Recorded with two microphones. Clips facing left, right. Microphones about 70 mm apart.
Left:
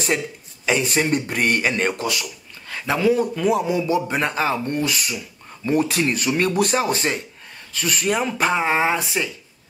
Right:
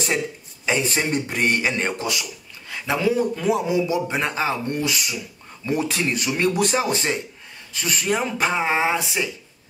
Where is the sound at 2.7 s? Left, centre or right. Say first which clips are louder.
Left 1 dB; left.